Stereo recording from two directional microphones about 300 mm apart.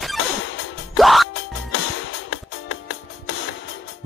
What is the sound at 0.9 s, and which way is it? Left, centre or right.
Music, centre.